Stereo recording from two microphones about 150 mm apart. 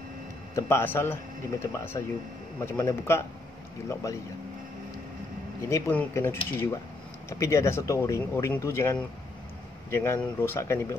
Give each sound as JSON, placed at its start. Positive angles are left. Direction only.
{"t": 0.6, "sound": "speech", "side_deg": 15}
{"t": 5.7, "sound": "speech", "side_deg": 15}